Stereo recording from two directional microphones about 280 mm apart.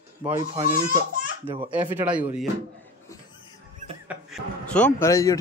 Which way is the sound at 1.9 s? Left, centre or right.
Centre.